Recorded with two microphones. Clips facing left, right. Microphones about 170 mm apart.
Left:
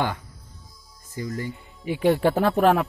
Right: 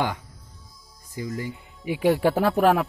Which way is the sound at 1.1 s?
10° right (ahead or behind).